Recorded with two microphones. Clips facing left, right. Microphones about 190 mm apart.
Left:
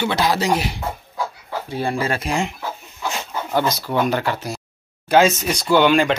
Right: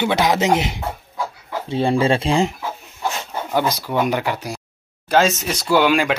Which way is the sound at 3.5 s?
10° right (ahead or behind).